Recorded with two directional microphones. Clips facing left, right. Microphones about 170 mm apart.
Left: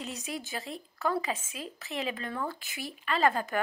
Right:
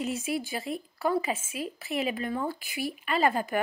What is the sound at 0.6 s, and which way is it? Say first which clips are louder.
A woman's voice: right 4 dB; 10° right (ahead or behind).